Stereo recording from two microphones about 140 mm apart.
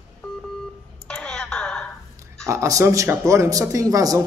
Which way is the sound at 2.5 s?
20° right (ahead or behind).